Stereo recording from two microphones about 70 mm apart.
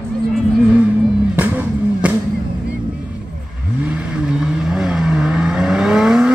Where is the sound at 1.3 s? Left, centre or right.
Right.